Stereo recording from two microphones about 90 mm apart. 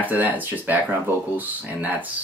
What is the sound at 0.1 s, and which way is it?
Speech, 20° right (ahead or behind).